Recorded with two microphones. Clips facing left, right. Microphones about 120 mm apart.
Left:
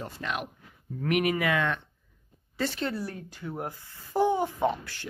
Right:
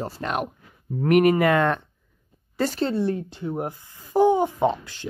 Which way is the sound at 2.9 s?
25° right (ahead or behind).